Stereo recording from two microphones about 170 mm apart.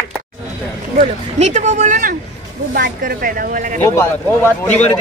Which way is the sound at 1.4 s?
45° right (ahead or behind).